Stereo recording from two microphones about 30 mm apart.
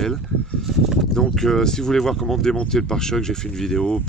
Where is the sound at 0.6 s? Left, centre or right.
Centre.